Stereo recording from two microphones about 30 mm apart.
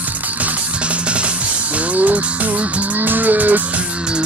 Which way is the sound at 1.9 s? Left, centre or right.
Right.